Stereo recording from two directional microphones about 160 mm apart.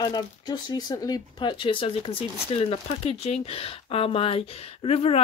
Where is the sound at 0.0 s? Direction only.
25° left (ahead or behind).